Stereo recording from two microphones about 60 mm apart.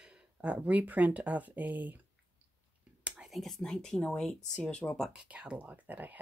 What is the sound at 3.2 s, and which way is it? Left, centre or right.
Speech, centre.